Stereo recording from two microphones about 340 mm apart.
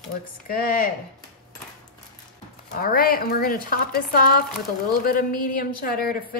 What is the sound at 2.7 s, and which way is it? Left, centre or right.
Speech, left.